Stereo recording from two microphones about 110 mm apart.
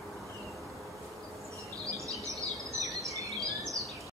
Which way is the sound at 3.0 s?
30° right (ahead or behind).